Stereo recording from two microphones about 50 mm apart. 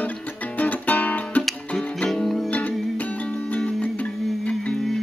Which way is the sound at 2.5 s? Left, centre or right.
Left.